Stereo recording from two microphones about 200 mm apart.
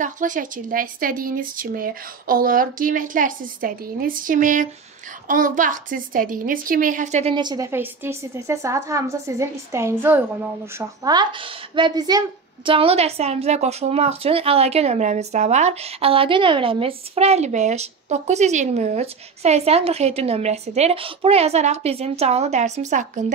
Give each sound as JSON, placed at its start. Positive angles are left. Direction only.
{"t": 0.0, "sound": "a woman's voice", "side_deg": -40}